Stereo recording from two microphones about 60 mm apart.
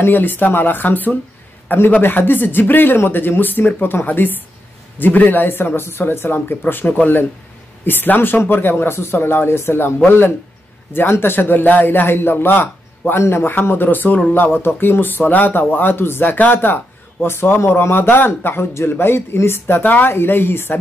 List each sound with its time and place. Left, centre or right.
0.0 s speech: left
19.8 s speech: left